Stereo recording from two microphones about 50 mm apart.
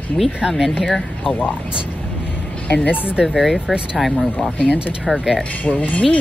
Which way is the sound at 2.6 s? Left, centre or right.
Left.